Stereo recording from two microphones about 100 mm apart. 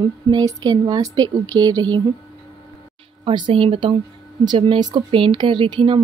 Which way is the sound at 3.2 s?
60° right (ahead or behind).